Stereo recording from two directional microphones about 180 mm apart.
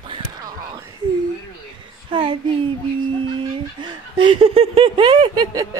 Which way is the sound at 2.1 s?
25° right (ahead or behind).